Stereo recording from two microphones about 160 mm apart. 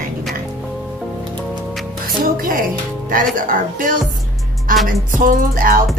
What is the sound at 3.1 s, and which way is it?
Speech, 60° right (ahead or behind).